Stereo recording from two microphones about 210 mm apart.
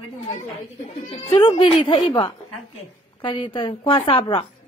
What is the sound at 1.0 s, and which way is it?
Speech, 25° left (ahead or behind).